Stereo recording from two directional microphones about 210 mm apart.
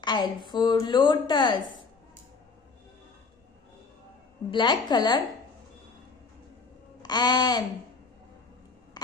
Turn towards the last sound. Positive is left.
turn(degrees=20)  # may be behind; listen again after turning